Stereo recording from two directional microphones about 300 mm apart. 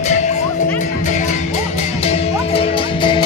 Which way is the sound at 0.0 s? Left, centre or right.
Left.